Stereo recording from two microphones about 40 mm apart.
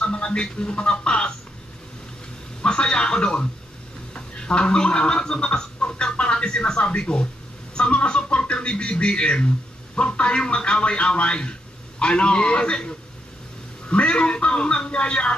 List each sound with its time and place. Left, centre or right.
0.0 s speech: left
2.6 s a sound: left
4.1 s a man's voice: left